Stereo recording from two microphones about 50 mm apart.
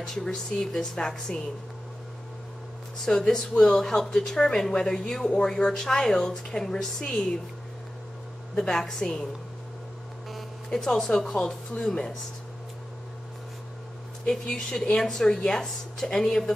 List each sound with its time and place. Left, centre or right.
0.0 s speech: centre
3.1 s speech: centre
8.5 s speech: centre
10.7 s speech: centre
11.3 s speech: left
14.3 s speech: centre